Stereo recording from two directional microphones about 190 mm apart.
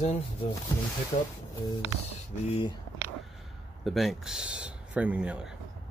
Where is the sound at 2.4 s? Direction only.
30° left (ahead or behind).